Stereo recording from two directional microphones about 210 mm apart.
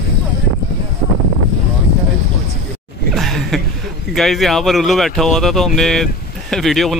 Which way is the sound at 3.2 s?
Centre (ahead or behind).